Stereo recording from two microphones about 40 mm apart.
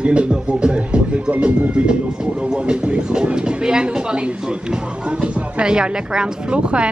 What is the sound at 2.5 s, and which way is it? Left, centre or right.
Speech, right.